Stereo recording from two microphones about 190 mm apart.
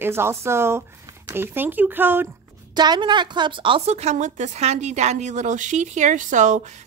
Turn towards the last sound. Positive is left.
turn(degrees=-40)  # may be behind; listen again after turning